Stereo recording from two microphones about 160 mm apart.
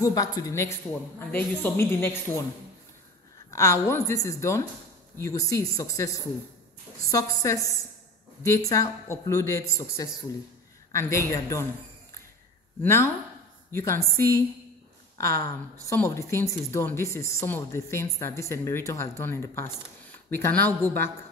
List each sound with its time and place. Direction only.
0.0 s a woman's voice: 20° left (ahead or behind)
3.5 s a woman's voice: 20° left (ahead or behind)
12.8 s a woman's voice: 15° left (ahead or behind)